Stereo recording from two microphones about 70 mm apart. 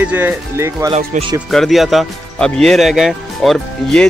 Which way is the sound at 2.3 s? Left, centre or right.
Centre.